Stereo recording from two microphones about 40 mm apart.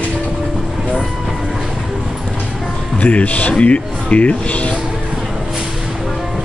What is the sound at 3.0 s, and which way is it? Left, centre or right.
Speech, left.